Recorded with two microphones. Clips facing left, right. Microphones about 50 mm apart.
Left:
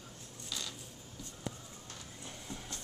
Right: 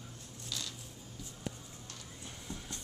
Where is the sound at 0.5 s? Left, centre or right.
Centre.